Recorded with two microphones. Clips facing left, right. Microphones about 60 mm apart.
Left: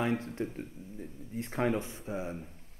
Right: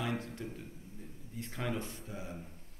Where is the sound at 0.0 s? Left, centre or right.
Left.